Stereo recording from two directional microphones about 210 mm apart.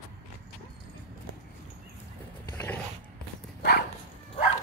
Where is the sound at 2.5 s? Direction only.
10° left (ahead or behind).